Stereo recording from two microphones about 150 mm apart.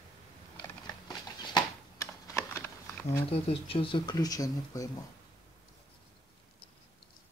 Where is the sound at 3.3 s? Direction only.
40° left (ahead or behind); by 5.0 s 25° left (ahead or behind).